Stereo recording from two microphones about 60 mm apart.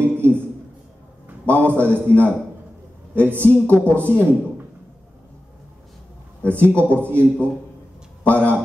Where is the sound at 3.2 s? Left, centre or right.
Right.